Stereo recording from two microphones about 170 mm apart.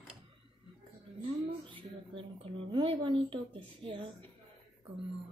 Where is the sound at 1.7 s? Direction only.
30° right (ahead or behind).